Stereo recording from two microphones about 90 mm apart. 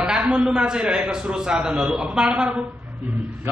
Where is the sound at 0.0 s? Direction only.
10° right (ahead or behind).